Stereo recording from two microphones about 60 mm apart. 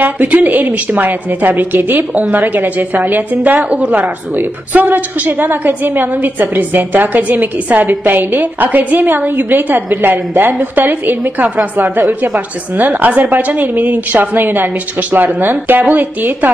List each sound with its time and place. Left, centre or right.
0.0 s a woman's voice: right